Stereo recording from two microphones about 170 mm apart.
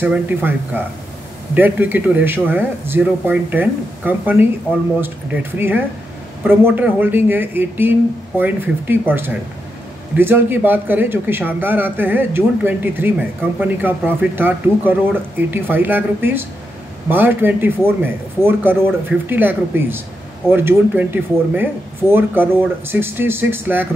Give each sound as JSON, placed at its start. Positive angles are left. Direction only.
{"t": 0.0, "sound": "speech", "side_deg": -10}